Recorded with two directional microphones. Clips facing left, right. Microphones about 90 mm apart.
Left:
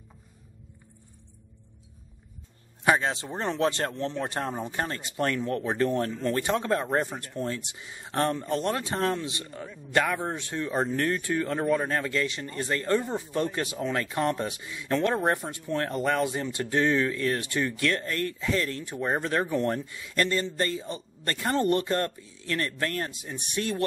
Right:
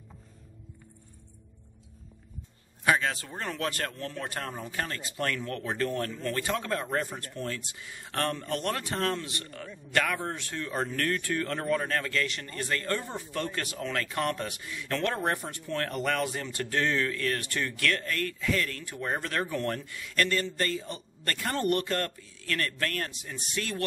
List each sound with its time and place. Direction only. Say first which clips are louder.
2.8 s speech: left 2 dB; 25° left (ahead or behind)